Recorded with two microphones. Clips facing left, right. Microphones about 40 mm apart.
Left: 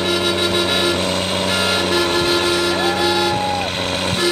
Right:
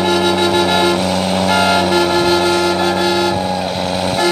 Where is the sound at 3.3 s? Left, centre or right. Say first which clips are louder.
Right 2 dB; left.